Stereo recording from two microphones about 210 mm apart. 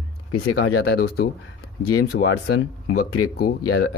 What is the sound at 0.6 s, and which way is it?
Speech, 50° left (ahead or behind).